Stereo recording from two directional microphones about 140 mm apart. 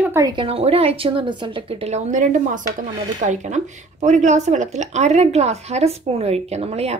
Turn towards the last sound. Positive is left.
turn(degrees=-50)  # may be behind; listen again after turning